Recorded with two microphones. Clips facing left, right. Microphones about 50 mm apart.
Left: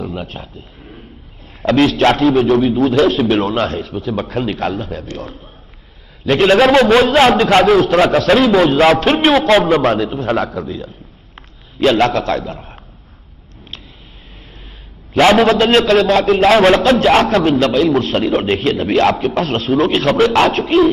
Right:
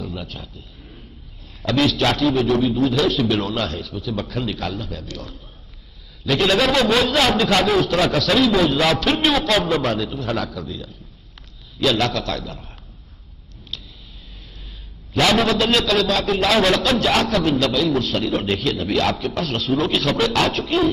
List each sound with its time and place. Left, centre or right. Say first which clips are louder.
0.0 s a man's voice: left 6 dB; left
15.1 s a man's voice: left 7 dB; left